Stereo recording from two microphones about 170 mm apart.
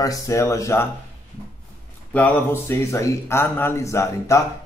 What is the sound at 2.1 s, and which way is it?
Speech, 10° left (ahead or behind).